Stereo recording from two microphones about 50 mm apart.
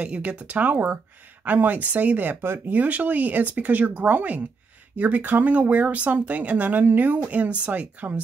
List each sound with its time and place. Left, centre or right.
0.0 s speech: right
2.4 s speech: right
2.7 s speech: right